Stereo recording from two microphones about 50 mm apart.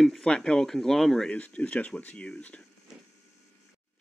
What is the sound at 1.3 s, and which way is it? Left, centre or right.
Speech, left.